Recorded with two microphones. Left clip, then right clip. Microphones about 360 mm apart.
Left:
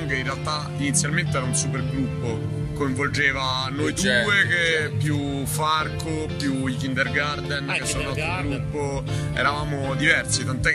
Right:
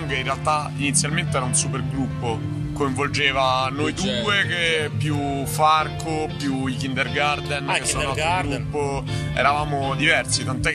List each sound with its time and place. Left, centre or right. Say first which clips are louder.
0.1 s speech: right 5 dB; centre
2.8 s speech: right 1 dB; centre
7.7 s speech: right 5 dB; centre
9.4 s speech: right 4 dB; centre